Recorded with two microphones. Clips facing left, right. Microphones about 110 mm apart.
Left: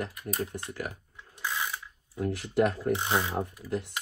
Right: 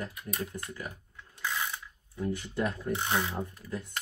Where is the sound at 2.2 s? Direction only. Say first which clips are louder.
Left 5 dB; 90° left.